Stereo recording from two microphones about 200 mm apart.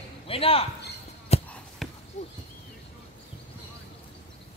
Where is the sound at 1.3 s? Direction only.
30° left (ahead or behind).